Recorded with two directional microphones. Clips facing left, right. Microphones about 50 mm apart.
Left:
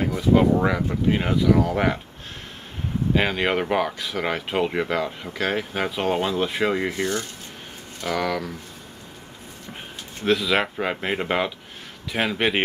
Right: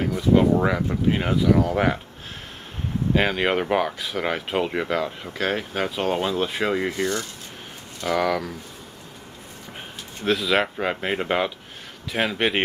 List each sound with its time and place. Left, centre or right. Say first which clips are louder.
0.0 s speech: even; centre
3.2 s speech: right 1 dB; centre
8.1 s speech: right 2 dB; centre
10.2 s speech: even; centre